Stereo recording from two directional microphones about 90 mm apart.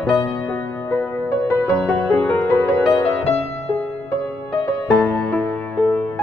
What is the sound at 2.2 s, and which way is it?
Music, 25° left (ahead or behind).